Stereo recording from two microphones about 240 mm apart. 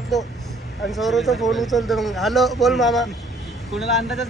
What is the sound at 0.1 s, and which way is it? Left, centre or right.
A man's voice, centre.